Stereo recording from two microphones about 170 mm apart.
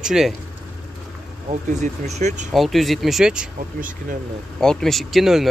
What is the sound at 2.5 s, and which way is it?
Speech, centre (ahead or behind).